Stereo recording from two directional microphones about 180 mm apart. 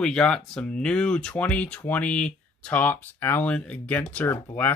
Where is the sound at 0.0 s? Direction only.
5° left (ahead or behind).